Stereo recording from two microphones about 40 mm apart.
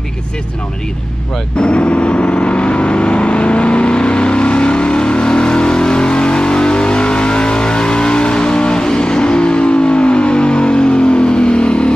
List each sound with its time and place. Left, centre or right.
1.6 s vehicle: left